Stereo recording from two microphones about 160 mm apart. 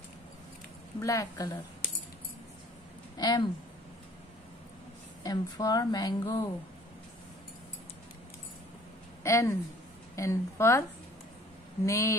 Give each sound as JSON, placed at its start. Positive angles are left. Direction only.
{"t": 1.0, "sound": "a woman's voice", "side_deg": 20}
{"t": 3.2, "sound": "a woman's voice", "side_deg": 25}
{"t": 5.2, "sound": "a woman's voice", "side_deg": 25}
{"t": 9.2, "sound": "a woman's voice", "side_deg": 20}